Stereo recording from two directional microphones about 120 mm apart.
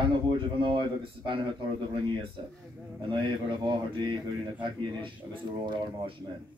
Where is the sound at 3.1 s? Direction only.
45° right (ahead or behind).